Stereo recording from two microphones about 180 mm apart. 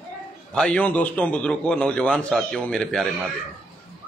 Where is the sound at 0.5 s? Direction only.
5° left (ahead or behind).